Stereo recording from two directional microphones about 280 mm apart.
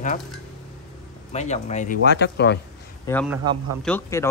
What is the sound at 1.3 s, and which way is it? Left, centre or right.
Speech, left.